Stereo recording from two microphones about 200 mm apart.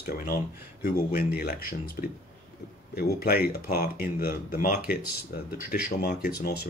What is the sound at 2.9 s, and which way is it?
Speech, 50° left (ahead or behind).